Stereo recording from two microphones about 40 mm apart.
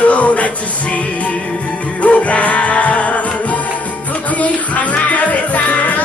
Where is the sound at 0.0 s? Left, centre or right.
Left.